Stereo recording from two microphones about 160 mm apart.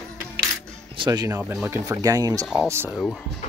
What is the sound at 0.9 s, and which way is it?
Speech, 25° right (ahead or behind).